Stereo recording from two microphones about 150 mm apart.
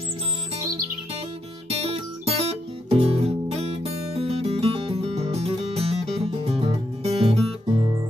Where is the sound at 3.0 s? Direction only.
40° right (ahead or behind).